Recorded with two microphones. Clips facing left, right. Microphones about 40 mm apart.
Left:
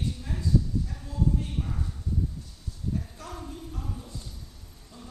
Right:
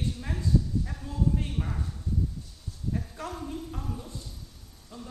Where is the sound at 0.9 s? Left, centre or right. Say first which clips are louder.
Right 2 dB; centre.